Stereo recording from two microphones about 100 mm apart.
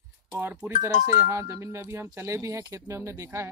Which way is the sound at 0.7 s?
25° right (ahead or behind).